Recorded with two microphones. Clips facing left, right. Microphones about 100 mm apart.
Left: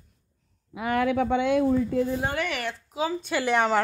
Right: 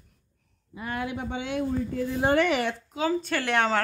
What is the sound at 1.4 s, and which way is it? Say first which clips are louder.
Speech: left 3 dB; 50° left (ahead or behind).